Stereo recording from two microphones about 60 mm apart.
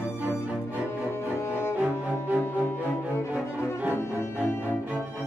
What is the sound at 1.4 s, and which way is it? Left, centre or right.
Cello, left.